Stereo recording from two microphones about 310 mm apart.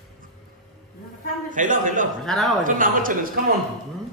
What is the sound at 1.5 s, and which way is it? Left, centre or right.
Speech, right.